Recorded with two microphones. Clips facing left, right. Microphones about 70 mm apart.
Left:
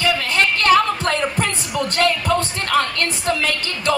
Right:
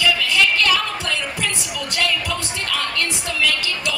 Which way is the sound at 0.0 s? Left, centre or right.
Left.